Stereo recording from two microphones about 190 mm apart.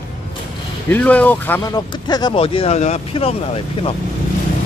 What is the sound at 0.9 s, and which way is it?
Speech, 10° left (ahead or behind).